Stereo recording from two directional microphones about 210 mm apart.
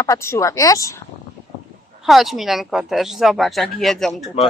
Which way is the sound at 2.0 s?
Centre (ahead or behind).